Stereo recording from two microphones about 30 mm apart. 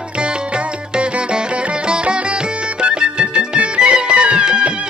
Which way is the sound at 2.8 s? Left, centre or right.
Right.